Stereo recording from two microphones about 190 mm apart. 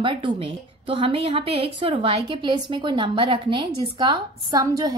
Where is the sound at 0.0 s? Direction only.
25° right (ahead or behind).